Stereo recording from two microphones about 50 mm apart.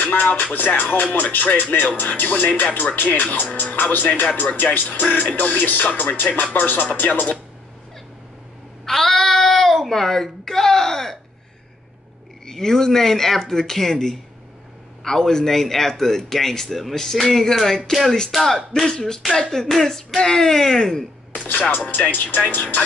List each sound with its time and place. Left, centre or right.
0.0 s speech: left
8.8 s child singing: centre
12.4 s speech: centre
21.5 s speech: left